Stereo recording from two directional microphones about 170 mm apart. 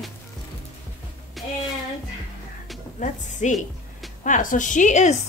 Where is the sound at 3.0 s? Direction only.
45° left (ahead or behind).